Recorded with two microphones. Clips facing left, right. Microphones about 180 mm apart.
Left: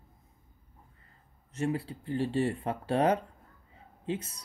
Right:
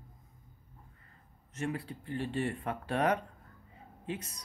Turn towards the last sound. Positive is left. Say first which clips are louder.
# left 5 dB
turn(degrees=30)  # may be behind; listen again after turning